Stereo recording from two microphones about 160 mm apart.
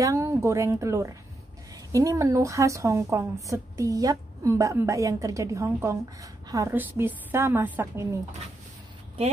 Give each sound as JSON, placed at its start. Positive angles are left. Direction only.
{"t": 0.0, "sound": "a woman's voice", "side_deg": -20}